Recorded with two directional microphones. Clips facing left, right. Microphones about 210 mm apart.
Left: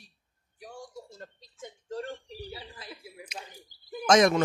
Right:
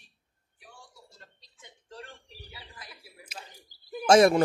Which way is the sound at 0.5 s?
40° left (ahead or behind).